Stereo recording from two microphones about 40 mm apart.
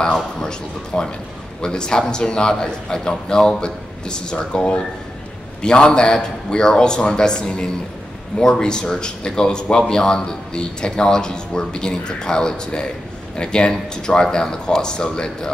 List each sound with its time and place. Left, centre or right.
0.0 s speech: centre